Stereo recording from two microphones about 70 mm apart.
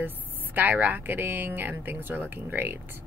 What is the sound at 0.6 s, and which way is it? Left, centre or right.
Speech, right.